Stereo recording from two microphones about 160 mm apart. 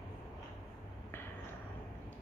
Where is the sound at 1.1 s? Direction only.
15° left (ahead or behind).